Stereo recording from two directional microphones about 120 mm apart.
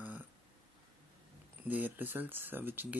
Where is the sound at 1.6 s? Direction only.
15° right (ahead or behind).